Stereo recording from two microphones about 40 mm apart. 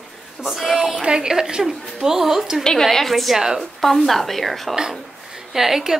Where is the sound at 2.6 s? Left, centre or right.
Centre.